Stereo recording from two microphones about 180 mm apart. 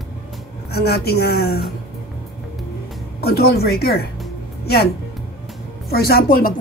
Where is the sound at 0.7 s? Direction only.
60° left (ahead or behind).